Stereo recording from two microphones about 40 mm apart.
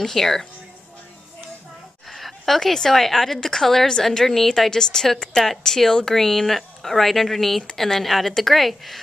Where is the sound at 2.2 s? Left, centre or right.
Centre.